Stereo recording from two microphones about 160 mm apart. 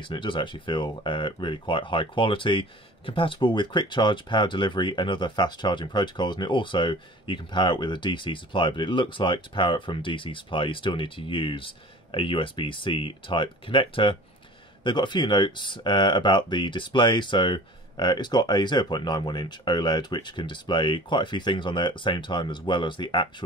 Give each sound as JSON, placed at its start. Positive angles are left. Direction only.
{"t": 0.0, "sound": "speech", "side_deg": 30}